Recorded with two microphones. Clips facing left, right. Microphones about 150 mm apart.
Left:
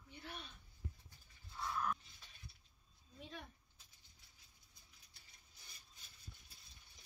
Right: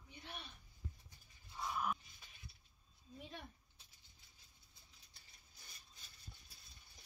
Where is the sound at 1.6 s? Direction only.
15° right (ahead or behind).